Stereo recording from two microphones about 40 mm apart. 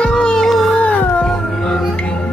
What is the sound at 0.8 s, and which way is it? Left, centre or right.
Music, left.